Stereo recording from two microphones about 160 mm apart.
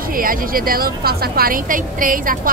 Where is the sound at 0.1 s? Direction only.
60° right (ahead or behind).